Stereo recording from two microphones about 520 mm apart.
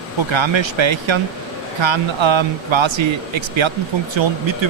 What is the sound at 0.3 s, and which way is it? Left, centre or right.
Speech, right.